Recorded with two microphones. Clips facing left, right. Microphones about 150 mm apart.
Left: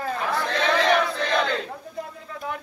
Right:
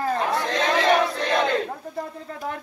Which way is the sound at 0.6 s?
35° right (ahead or behind).